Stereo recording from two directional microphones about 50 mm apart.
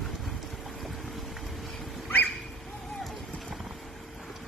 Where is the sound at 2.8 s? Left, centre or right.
Centre.